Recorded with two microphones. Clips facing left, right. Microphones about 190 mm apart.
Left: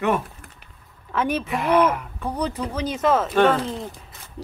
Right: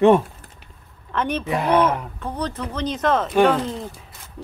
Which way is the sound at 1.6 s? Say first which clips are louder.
Even; 30° right (ahead or behind).